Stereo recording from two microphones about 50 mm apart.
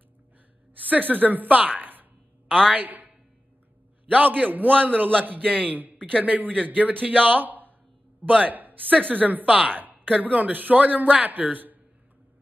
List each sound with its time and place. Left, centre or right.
0.7 s a woman's voice: right
2.4 s a sound: centre
2.7 s a woman's voice: right